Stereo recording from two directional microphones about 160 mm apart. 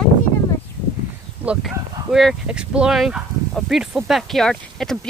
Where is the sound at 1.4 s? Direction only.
5° right (ahead or behind).